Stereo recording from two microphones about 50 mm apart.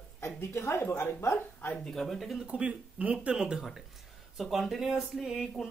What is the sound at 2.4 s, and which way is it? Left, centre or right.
Speech, right.